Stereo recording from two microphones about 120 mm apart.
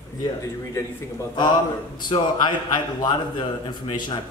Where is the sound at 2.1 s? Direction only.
40° left (ahead or behind).